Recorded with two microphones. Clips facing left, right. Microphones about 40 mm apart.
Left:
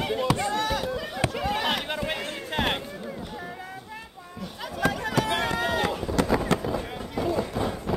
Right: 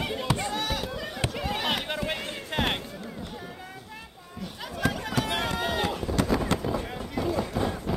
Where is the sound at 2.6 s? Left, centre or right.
Centre.